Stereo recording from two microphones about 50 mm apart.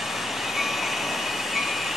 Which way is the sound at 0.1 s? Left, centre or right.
Centre.